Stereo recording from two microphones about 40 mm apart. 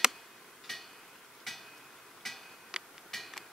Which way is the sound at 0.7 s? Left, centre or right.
Centre.